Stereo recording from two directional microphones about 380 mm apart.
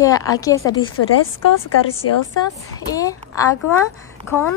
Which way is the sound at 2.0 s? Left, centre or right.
Left.